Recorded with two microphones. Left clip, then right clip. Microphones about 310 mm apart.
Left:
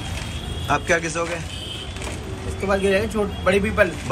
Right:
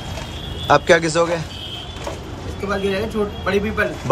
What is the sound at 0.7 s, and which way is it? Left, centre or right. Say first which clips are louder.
Speech: right 7 dB; centre.